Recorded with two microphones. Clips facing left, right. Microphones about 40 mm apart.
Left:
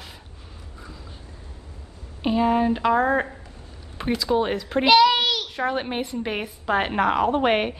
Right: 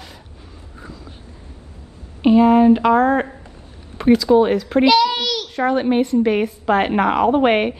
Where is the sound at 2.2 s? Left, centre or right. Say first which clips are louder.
Right 8 dB; centre.